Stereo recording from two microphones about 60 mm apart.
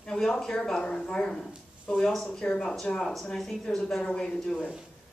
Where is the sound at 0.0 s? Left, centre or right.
Centre.